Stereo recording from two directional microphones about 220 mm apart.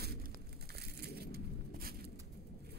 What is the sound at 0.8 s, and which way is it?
Crushing, 45° right (ahead or behind).